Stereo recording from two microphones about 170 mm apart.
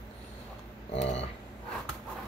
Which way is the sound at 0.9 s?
40° left (ahead or behind).